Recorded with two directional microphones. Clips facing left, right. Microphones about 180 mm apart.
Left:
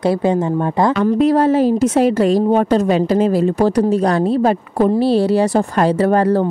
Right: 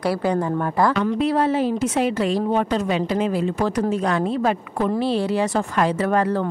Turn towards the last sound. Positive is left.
turn(degrees=35)  # may be behind; listen again after turning